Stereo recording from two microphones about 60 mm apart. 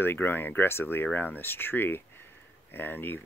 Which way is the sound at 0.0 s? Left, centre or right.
Left.